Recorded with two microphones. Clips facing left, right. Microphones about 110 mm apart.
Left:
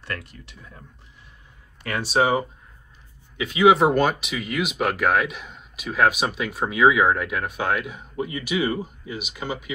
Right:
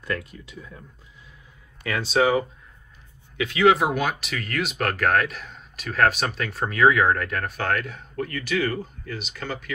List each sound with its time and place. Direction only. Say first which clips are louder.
1.9 s speech: even; 30° left (ahead or behind)
3.6 s speech: left 3 dB; centre (ahead or behind)